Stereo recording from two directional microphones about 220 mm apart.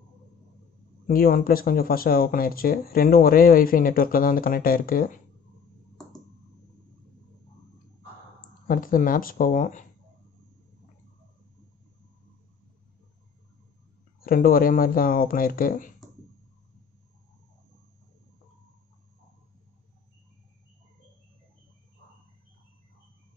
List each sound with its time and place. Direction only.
1.0 s speech: 40° left (ahead or behind)
8.4 s speech: 40° left (ahead or behind)
14.2 s speech: 40° left (ahead or behind)